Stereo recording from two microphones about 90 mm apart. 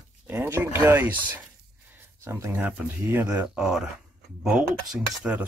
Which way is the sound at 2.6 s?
20° right (ahead or behind).